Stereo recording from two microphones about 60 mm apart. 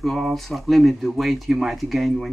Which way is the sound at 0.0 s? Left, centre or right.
Centre.